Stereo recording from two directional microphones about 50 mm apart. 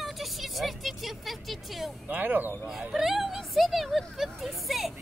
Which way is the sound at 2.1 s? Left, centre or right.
Right.